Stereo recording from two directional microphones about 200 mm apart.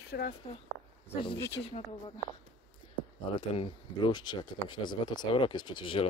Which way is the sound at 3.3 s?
25° left (ahead or behind).